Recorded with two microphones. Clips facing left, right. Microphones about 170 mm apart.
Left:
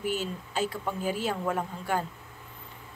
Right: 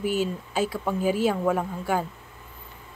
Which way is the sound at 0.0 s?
10° right (ahead or behind).